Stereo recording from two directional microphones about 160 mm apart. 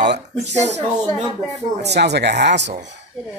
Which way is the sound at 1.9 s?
90° right.